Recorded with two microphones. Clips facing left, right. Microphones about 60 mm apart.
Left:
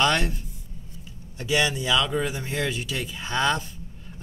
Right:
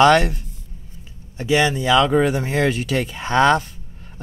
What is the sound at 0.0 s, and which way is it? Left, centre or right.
Speech, right.